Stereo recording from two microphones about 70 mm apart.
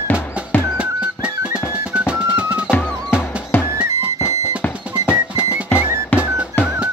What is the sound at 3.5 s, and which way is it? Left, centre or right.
Music, left.